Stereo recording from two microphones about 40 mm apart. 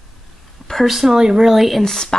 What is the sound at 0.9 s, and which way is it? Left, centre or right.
Speech, centre.